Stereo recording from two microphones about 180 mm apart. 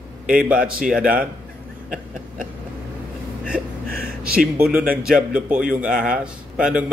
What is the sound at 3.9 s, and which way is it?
Speech, 55° right (ahead or behind).